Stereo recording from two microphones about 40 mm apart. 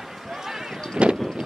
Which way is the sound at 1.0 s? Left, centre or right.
Right.